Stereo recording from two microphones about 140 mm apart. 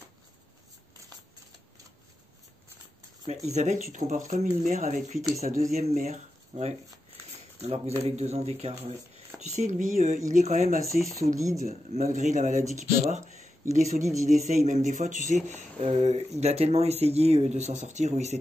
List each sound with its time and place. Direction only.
3.4 s speech: 55° right (ahead or behind)
15.8 s speech: 50° right (ahead or behind)